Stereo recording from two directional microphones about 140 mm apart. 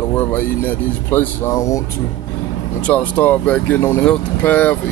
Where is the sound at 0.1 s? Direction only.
15° left (ahead or behind).